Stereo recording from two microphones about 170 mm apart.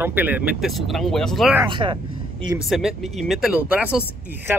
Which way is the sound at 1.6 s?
30° right (ahead or behind).